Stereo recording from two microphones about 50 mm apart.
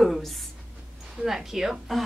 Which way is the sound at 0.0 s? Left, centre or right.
Centre.